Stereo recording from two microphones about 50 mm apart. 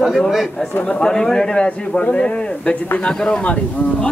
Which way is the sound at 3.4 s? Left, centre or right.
Left.